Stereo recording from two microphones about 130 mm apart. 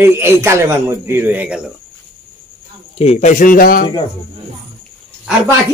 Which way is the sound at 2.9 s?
55° left (ahead or behind).